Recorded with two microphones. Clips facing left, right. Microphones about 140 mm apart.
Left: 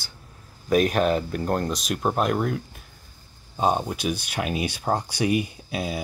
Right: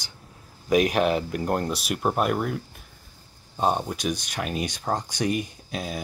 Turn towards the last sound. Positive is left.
turn(degrees=5)  # may be behind; listen again after turning